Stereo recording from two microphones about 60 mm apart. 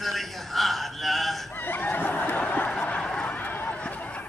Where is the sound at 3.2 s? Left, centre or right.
Left.